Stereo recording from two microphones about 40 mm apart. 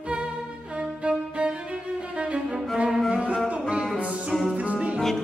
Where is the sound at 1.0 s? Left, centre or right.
Right.